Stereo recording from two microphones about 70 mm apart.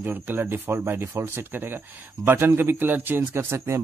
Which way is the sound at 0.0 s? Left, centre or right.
Right.